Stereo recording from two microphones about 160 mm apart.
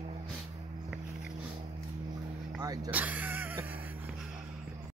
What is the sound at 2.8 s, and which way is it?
Music, 10° right (ahead or behind).